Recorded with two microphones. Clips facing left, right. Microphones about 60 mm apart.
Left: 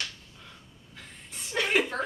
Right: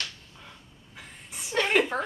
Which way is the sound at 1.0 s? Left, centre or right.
Centre.